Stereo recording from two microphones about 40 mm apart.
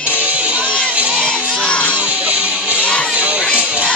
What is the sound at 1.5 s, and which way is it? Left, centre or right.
Music, left.